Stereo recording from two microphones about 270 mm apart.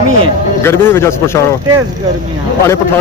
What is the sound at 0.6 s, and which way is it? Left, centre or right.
Speech, centre.